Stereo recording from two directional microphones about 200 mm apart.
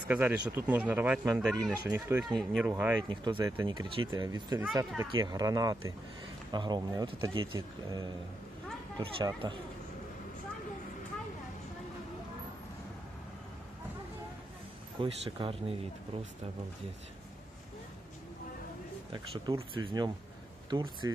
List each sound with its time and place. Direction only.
0.1 s speech: 10° right (ahead or behind)
1.4 s speech: centre (ahead or behind)
1.9 s speech: 10° right (ahead or behind)
2.2 s speech: centre (ahead or behind)
2.7 s speech: 10° right (ahead or behind)
3.1 s speech: 25° right (ahead or behind)
15.0 s speech: 25° right (ahead or behind)
19.1 s speech: 25° right (ahead or behind)